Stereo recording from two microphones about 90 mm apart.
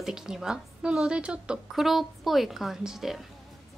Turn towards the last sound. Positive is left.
turn(degrees=-5)  # may be behind; listen again after turning